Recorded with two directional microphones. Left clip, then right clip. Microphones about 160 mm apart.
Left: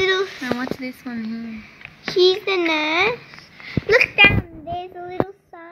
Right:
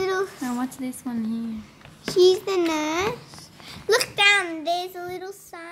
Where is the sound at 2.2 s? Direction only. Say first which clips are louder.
Left 2 dB; 10° right (ahead or behind).